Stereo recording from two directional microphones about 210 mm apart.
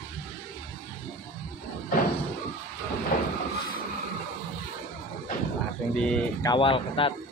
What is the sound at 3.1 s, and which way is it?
Vehicle, 45° left (ahead or behind).